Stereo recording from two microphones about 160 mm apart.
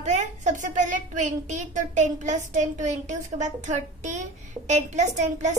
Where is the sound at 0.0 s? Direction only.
45° right (ahead or behind).